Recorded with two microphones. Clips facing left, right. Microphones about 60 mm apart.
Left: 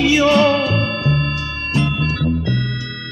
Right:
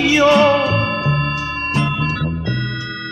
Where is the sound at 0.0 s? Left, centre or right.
Right.